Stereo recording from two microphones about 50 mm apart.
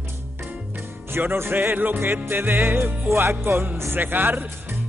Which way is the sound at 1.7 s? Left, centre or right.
Right.